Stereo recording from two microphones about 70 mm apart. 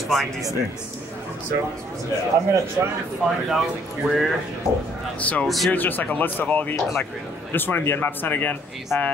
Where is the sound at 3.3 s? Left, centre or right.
Centre.